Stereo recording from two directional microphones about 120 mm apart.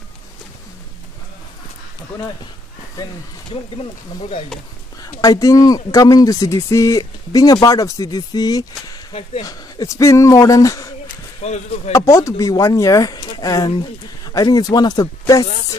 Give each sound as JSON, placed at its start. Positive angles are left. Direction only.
{"t": 3.5, "sound": "speech", "side_deg": 45}
{"t": 5.0, "sound": "speech", "side_deg": 30}
{"t": 11.4, "sound": "speech", "side_deg": 65}
{"t": 11.9, "sound": "speech", "side_deg": 25}